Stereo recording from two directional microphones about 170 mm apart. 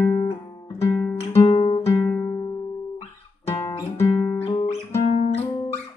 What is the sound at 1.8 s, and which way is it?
Music, 10° left (ahead or behind).